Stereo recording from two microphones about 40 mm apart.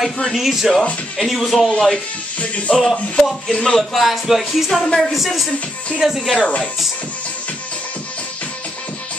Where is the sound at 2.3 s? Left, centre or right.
Left.